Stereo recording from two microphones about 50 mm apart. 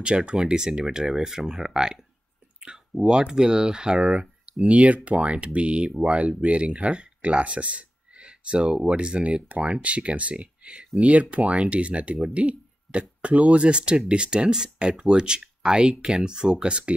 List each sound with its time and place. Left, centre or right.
0.0 s speech: centre
12.4 s a sound: right
13.2 s speech: right